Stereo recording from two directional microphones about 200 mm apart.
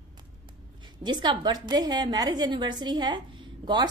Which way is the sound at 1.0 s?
20° right (ahead or behind).